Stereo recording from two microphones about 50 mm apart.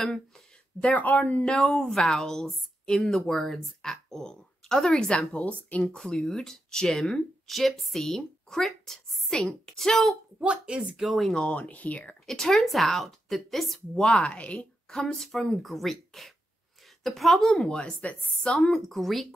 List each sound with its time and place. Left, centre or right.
0.9 s speech: left
1.4 s speech: centre
5.3 s speech: left
5.9 s a woman's voice: centre
9.3 s speech: centre
9.8 s a woman's voice: centre
10.4 s speech: right
11.0 s a woman's voice: centre
11.4 s speech: left
12.3 s a woman's voice: centre
13.9 s speech: centre
14.9 s a woman's voice: centre
18.0 s speech: left
18.5 s a woman's voice: centre